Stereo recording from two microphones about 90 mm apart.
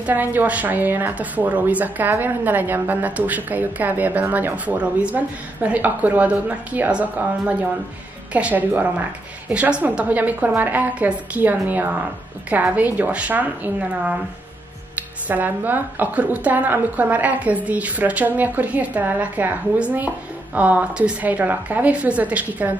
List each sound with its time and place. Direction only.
0.0 s a woman's voice: 20° right (ahead or behind)